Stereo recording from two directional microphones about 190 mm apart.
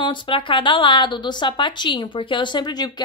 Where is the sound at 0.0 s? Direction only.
25° left (ahead or behind).